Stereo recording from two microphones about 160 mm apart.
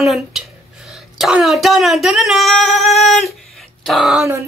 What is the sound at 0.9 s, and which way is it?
Speech, centre (ahead or behind).